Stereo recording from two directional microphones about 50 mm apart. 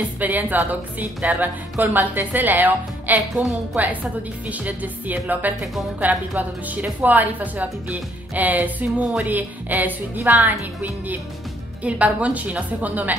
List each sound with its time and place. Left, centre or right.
0.2 s a woman's voice: right